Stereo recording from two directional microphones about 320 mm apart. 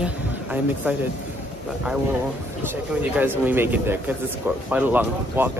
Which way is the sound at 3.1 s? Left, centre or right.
Centre.